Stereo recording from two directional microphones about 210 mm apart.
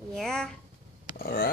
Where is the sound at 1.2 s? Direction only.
45° left (ahead or behind).